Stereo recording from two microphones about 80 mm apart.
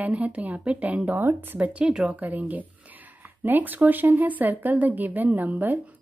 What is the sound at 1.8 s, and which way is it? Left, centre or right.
A woman's voice, centre.